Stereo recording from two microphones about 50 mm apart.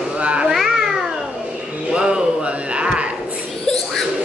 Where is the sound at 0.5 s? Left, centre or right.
Centre.